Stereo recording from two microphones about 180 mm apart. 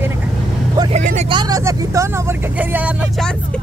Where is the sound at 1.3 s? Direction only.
20° right (ahead or behind).